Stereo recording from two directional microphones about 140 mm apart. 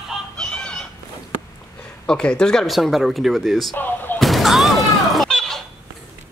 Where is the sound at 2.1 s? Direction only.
5° left (ahead or behind).